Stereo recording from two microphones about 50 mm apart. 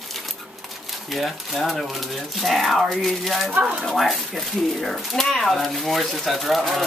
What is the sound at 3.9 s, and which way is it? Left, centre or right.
Speech, centre.